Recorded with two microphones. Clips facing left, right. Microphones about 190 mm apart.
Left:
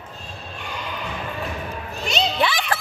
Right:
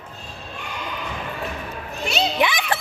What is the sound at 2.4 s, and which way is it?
Music, 15° right (ahead or behind).